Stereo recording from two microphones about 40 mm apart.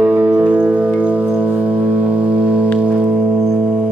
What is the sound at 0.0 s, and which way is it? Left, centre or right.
Music, right.